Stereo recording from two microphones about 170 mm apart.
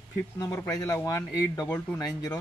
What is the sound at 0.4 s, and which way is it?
A man's voice, 20° left (ahead or behind).